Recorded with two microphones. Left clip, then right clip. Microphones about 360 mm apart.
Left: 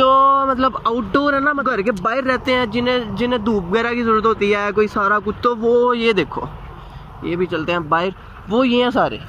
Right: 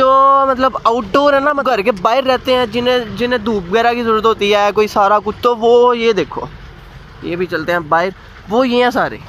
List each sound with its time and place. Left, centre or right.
0.0 s speech: centre
7.2 s speech: right
7.5 s speech: centre